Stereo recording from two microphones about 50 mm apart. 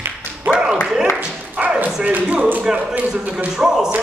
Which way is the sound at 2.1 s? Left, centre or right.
Right.